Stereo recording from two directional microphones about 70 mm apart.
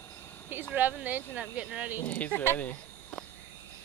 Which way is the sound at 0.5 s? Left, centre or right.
Right.